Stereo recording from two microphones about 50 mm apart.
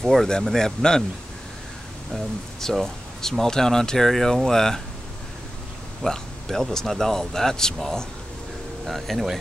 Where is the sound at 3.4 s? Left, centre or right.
Centre.